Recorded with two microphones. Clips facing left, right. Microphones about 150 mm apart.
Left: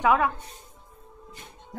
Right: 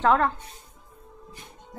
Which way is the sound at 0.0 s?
10° left (ahead or behind).